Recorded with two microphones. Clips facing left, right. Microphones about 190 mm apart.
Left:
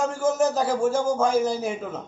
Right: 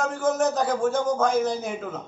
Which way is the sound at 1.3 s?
5° left (ahead or behind).